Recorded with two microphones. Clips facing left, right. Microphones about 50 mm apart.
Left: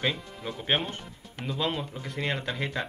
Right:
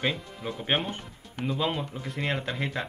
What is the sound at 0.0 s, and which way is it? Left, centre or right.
Speech, centre.